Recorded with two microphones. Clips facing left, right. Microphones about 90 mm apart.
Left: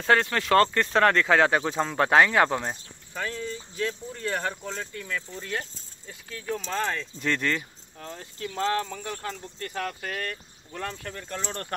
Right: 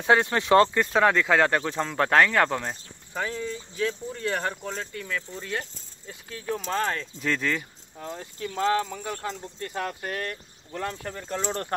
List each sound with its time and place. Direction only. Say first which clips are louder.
0.0 s speech: right 1 dB; 20° right (ahead or behind)
0.7 s speech: even; 5° right (ahead or behind); by 2.8 s 10° left (ahead or behind)
3.1 s speech: right 2 dB; 15° right (ahead or behind)
9.3 s speech: right 1 dB; 20° right (ahead or behind)
10.0 s speech: right 1 dB; 5° right (ahead or behind); by 11.7 s 25° right (ahead or behind)